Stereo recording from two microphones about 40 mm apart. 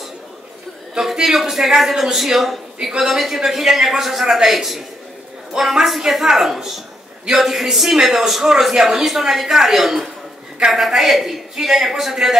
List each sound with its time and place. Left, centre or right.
0.9 s a woman's voice: centre